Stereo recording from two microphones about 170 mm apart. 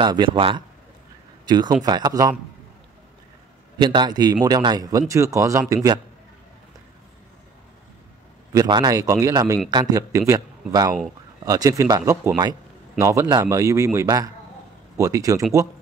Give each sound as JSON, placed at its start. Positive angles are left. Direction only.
{"t": 0.0, "sound": "speech", "side_deg": -25}
{"t": 3.7, "sound": "speech", "side_deg": -25}
{"t": 8.5, "sound": "a man's voice", "side_deg": -25}